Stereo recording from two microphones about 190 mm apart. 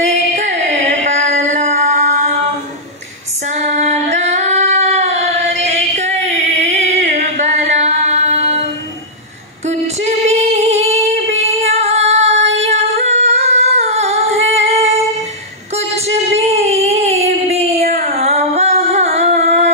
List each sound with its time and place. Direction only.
0.0 s music: 35° right (ahead or behind)
3.4 s female singing: 35° right (ahead or behind)
9.7 s singing: 35° right (ahead or behind)
16.3 s a sound: 35° right (ahead or behind)
17.7 s music: 35° right (ahead or behind)